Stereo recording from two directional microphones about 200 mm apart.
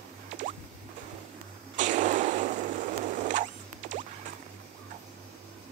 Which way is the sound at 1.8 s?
40° right (ahead or behind).